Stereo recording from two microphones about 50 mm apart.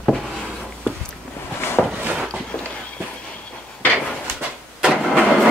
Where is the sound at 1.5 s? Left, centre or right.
Left.